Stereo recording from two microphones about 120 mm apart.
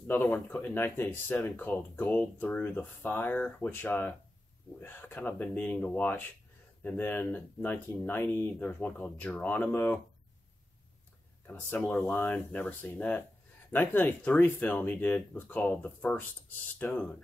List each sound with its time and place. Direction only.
0.0 s speech: 15° left (ahead or behind)
11.4 s speech: 10° left (ahead or behind)